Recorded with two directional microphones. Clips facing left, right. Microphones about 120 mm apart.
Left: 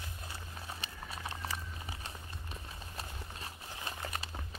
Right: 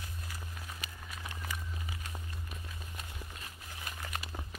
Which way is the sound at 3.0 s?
30° left (ahead or behind).